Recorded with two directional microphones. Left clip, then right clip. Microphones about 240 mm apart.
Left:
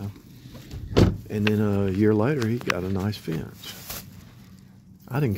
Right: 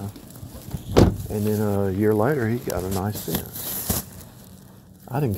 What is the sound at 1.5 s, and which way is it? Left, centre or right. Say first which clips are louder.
Speech: right 2 dB; left.